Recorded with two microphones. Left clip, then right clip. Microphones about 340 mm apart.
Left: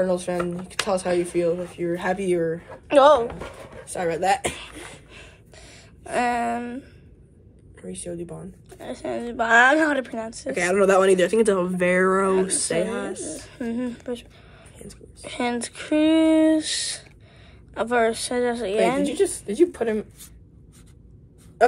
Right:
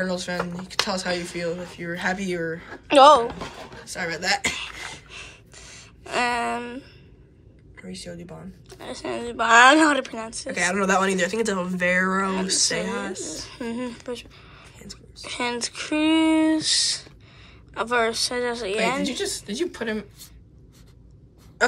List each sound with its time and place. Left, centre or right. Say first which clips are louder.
0.0 s speech: left 4 dB; centre
2.9 s speech: right 2 dB; centre
3.8 s speech: left 4 dB; centre
5.1 s a sound: right 5 dB; centre
8.1 s speech: left 9 dB; left
8.7 s speech: left 1 dB; centre
10.4 s speech: left 4 dB; centre